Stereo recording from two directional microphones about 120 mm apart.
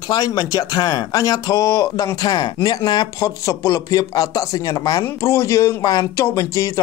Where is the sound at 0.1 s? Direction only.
35° left (ahead or behind).